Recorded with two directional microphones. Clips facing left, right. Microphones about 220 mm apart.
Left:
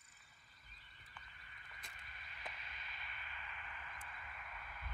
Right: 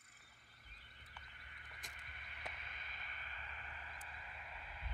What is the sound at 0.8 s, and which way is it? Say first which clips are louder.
Frog: even; 60° right (ahead or behind).